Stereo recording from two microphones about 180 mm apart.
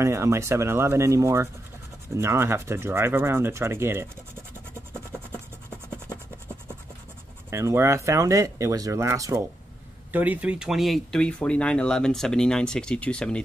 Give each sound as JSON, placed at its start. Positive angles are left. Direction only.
{"t": 0.0, "sound": "speech", "side_deg": -15}
{"t": 7.5, "sound": "speech", "side_deg": -15}